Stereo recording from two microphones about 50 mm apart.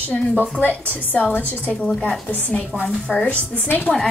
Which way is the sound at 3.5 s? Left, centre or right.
Left.